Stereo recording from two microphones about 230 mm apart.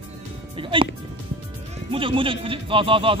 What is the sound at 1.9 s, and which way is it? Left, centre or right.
Speech, right.